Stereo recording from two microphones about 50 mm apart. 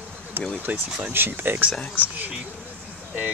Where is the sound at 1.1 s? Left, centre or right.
Right.